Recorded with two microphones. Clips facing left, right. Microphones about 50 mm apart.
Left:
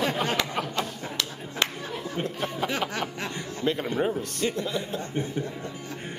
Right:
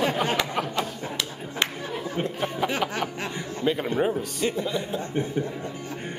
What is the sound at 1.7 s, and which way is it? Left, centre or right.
Speech, centre.